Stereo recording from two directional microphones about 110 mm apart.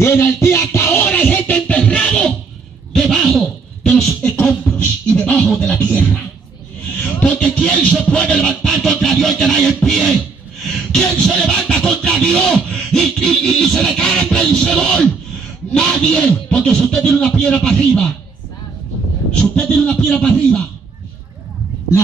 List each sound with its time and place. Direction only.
0.0 s music: 25° left (ahead or behind)
2.9 s a sound: centre (ahead or behind)
3.8 s beatboxing: 10° left (ahead or behind)
5.1 s music: 10° left (ahead or behind)
9.8 s beatboxing: 5° left (ahead or behind)
10.7 s music: 5° left (ahead or behind)
15.7 s speech: 10° left (ahead or behind)
19.5 s speech: 10° left (ahead or behind)